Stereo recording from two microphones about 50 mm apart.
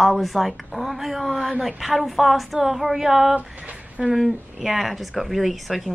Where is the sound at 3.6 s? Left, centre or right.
Right.